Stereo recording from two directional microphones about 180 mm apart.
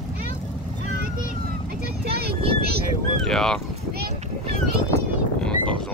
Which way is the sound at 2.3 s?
30° right (ahead or behind).